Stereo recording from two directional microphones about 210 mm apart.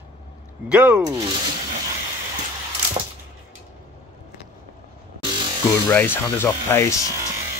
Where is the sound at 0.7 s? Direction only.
5° right (ahead or behind).